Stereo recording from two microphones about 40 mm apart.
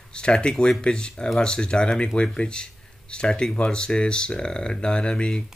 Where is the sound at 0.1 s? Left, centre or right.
Left.